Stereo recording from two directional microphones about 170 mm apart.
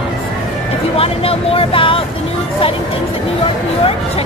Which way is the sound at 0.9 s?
35° left (ahead or behind).